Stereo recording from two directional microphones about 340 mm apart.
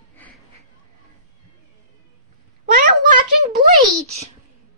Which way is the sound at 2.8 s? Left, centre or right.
Right.